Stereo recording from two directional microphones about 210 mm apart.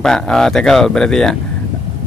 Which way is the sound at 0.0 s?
Centre (ahead or behind).